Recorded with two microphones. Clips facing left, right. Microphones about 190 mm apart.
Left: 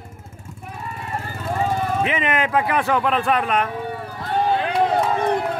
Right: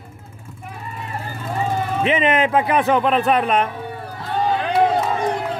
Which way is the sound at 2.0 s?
25° right (ahead or behind).